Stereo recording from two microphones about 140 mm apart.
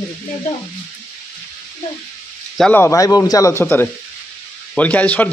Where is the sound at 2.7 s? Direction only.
20° left (ahead or behind).